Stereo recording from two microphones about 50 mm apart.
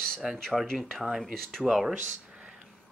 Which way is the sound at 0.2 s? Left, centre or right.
Centre.